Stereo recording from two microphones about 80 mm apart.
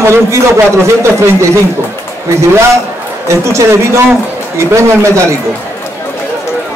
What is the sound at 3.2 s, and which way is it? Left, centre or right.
A man's voice, right.